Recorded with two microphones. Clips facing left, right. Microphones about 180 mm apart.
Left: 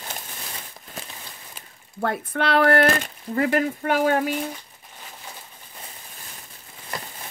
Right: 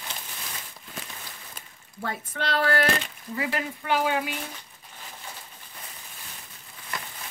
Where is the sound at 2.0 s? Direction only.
55° left (ahead or behind).